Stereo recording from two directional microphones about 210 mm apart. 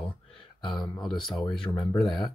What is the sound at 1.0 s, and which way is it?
Speech, centre (ahead or behind).